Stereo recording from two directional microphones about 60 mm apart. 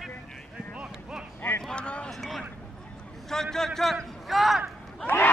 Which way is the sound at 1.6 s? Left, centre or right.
Centre.